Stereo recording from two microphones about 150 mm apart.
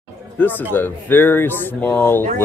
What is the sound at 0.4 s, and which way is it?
Speech, 10° left (ahead or behind).